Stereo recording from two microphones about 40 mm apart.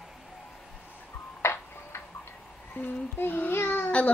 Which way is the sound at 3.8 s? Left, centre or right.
Left.